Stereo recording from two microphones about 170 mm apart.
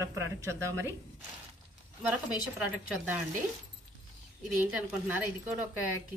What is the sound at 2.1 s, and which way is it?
Speech, 5° right (ahead or behind).